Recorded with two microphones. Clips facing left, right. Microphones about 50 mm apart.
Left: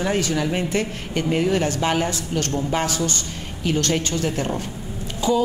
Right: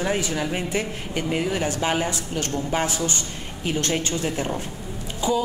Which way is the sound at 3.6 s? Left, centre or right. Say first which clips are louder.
Left 3 dB; right.